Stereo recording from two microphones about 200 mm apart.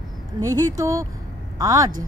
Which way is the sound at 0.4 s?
15° right (ahead or behind).